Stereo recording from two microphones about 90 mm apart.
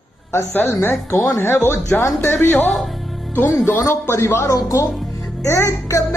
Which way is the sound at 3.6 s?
25° left (ahead or behind).